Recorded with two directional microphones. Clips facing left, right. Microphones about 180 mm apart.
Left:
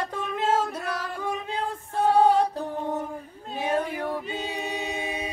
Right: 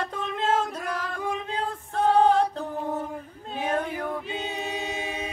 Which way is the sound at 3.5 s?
10° left (ahead or behind).